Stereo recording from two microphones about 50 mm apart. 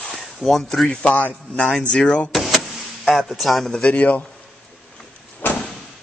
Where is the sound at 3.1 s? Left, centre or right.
Centre.